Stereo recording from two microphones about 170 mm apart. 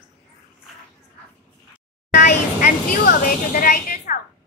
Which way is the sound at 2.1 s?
50° left (ahead or behind).